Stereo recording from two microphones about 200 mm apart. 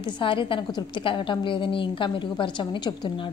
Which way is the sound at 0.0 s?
25° left (ahead or behind).